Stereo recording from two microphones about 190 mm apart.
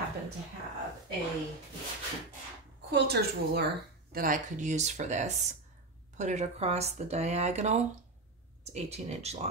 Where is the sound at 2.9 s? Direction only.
55° right (ahead or behind).